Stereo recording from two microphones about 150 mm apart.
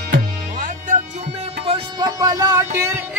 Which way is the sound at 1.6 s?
35° right (ahead or behind).